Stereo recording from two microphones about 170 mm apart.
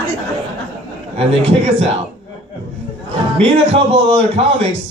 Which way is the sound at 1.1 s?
35° right (ahead or behind).